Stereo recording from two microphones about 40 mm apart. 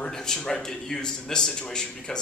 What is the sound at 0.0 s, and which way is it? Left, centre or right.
Speech, centre.